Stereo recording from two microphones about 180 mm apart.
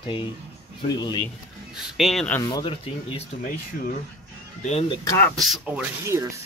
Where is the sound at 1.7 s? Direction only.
Centre (ahead or behind).